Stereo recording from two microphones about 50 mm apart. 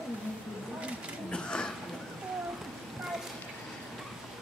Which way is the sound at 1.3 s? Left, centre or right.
Centre.